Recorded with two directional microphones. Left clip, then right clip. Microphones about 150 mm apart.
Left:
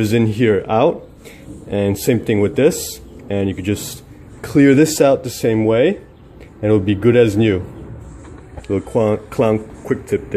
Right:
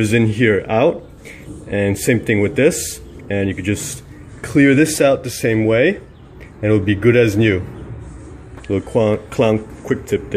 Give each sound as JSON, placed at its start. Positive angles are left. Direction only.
{"t": 0.0, "sound": "speech", "side_deg": 5}
{"t": 2.7, "sound": "speech", "side_deg": -20}
{"t": 3.3, "sound": "speech", "side_deg": 15}
{"t": 3.7, "sound": "a sound", "side_deg": 0}
{"t": 4.6, "sound": "speech", "side_deg": 15}
{"t": 8.6, "sound": "speech", "side_deg": 5}